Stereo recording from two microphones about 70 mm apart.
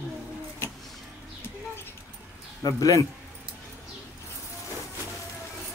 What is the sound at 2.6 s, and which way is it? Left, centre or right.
Speech, left.